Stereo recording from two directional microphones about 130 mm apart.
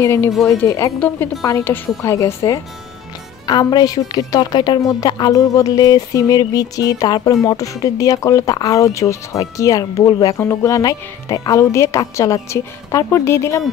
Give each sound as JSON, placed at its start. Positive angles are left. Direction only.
{"t": 0.0, "sound": "speech", "side_deg": 20}
{"t": 0.9, "sound": "a woman's voice", "side_deg": 10}